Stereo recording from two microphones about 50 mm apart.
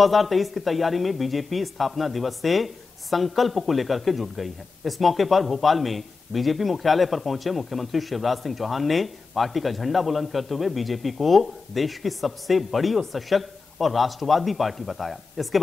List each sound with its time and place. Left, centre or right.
0.0 s speech: centre